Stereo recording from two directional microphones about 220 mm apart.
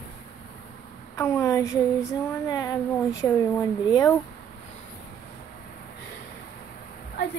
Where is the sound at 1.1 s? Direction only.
15° left (ahead or behind).